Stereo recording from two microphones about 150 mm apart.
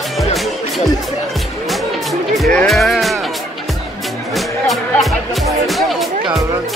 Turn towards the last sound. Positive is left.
turn(degrees=-25)  # may be behind; listen again after turning